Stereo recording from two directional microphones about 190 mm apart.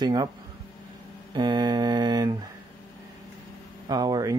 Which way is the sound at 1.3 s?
25° right (ahead or behind).